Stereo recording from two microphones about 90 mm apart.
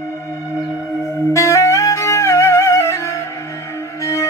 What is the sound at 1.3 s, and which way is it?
Music, 35° left (ahead or behind).